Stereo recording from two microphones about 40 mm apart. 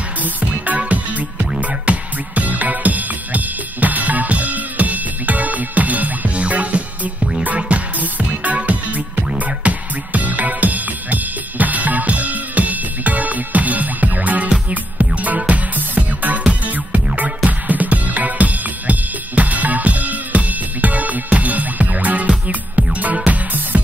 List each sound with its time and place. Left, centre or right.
0.2 s music: right